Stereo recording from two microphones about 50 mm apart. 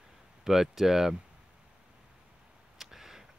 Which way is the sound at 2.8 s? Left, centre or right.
Centre.